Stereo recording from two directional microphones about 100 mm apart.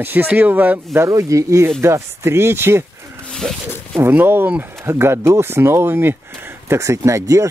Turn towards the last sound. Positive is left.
turn(degrees=-30)  # may be behind; listen again after turning